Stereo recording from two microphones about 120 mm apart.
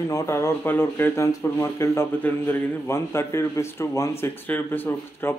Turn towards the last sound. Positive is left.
turn(degrees=20)  # may be behind; listen again after turning